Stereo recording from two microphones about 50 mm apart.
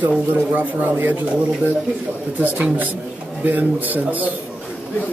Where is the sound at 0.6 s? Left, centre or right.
Right.